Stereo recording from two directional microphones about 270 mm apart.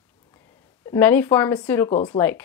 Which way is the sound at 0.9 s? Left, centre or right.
Centre.